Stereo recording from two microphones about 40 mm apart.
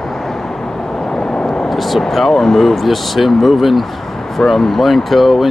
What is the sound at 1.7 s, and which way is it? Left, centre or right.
Speech, centre.